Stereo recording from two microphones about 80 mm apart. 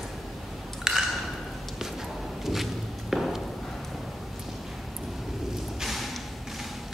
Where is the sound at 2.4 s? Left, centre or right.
Centre.